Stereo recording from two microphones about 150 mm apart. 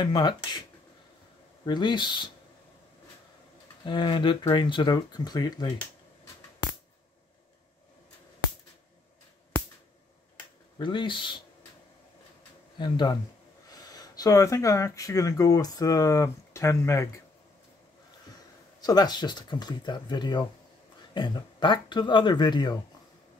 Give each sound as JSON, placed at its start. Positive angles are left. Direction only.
{"t": 0.0, "sound": "speech", "side_deg": 30}
{"t": 1.7, "sound": "speech", "side_deg": 30}
{"t": 3.8, "sound": "speech", "side_deg": 30}
{"t": 10.8, "sound": "speech", "side_deg": 30}
{"t": 12.7, "sound": "speech", "side_deg": 30}
{"t": 18.8, "sound": "speech", "side_deg": 25}